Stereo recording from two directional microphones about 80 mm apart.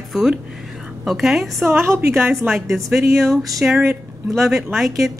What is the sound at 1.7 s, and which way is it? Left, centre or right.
Speech, right.